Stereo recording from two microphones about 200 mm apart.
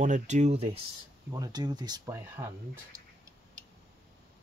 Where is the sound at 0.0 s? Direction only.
35° right (ahead or behind).